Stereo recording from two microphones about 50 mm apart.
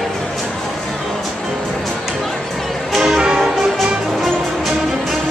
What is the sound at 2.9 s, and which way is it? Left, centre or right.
Music, centre.